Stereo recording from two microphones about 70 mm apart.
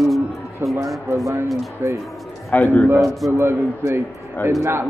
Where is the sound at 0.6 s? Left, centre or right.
Right.